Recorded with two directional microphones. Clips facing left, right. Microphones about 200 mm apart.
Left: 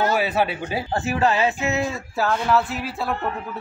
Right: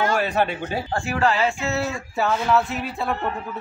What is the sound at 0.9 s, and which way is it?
Speech, 20° left (ahead or behind).